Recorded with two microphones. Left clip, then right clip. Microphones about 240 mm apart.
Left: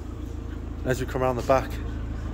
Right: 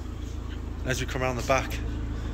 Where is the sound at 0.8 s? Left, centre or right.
Left.